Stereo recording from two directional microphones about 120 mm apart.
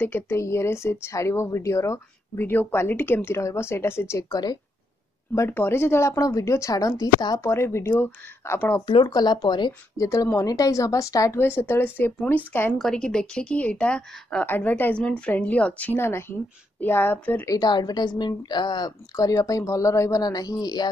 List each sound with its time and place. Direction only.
0.0 s speech: 20° left (ahead or behind)
5.3 s speech: 20° left (ahead or behind)
7.4 s speech: 20° left (ahead or behind)
8.8 s a woman's voice: 40° left (ahead or behind)
10.0 s a woman's voice: 25° left (ahead or behind)
12.7 s a woman's voice: 5° left (ahead or behind)
17.5 s a woman's voice: 35° left (ahead or behind)